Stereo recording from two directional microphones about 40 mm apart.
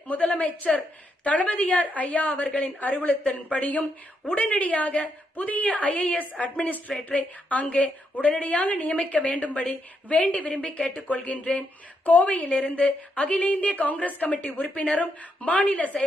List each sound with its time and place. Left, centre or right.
0.1 s a woman's voice: left
16.0 s a woman's voice: centre